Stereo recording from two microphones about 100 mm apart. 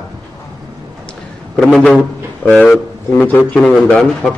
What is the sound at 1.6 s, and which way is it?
A man's voice, 10° left (ahead or behind).